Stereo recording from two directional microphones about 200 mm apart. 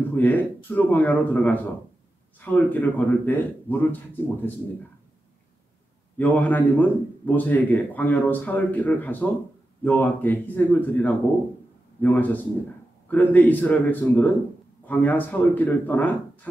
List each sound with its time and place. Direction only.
0.0 s a man's voice: 10° left (ahead or behind)
6.1 s a man's voice: 10° left (ahead or behind)